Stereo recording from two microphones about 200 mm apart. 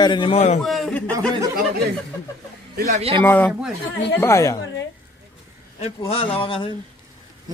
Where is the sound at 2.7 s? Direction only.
35° right (ahead or behind).